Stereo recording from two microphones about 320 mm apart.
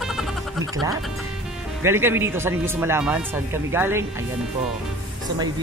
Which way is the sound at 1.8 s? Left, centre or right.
Centre.